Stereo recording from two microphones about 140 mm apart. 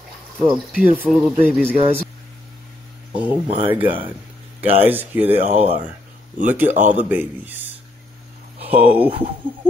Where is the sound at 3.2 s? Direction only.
40° right (ahead or behind).